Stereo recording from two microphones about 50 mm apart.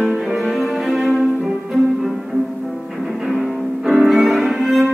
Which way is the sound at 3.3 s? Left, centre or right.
Centre.